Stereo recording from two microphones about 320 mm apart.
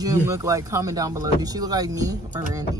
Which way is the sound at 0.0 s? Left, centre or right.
Centre.